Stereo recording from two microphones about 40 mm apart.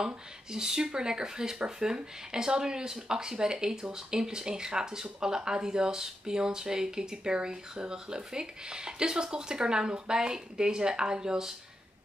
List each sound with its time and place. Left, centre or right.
0.0 s speech: centre